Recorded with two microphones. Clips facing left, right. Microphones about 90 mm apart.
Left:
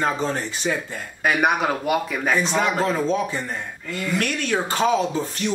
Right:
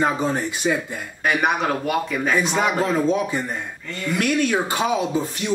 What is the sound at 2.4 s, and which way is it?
Speech, 15° right (ahead or behind).